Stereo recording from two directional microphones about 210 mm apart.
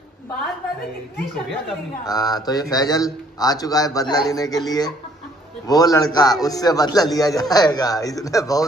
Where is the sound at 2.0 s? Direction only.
20° left (ahead or behind).